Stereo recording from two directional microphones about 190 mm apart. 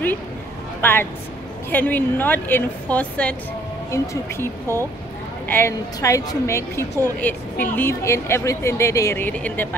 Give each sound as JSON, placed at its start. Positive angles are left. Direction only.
{"t": 0.7, "sound": "a woman's voice", "side_deg": 10}